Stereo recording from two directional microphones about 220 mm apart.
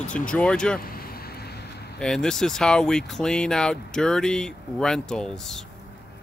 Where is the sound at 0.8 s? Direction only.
45° left (ahead or behind).